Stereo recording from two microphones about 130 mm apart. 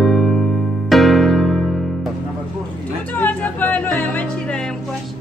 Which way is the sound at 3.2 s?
15° left (ahead or behind).